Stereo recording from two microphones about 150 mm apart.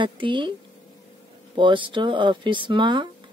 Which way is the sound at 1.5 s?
35° right (ahead or behind).